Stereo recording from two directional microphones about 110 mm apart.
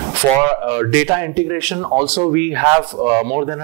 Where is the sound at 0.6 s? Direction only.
25° right (ahead or behind).